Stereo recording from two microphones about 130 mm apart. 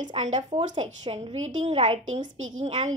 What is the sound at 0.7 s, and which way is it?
Speech, 40° right (ahead or behind).